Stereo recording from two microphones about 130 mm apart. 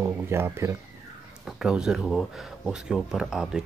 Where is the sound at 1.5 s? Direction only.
5° right (ahead or behind).